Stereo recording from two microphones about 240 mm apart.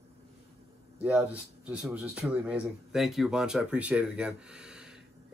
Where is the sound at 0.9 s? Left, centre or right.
Centre.